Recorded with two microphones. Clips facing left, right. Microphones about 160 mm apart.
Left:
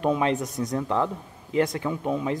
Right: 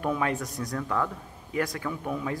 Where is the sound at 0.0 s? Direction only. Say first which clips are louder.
Left 5 dB; 20° left (ahead or behind).